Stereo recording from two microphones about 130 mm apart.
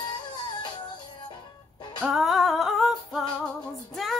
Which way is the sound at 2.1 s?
Centre (ahead or behind).